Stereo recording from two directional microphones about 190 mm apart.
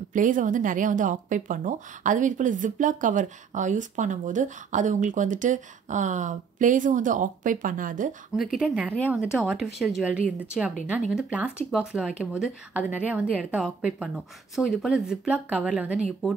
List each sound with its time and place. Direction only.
0.1 s speech: 45° right (ahead or behind)
8.5 s a woman's voice: 5° right (ahead or behind)